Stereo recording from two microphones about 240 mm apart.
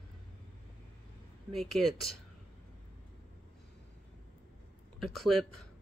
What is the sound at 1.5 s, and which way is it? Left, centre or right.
Speech, centre.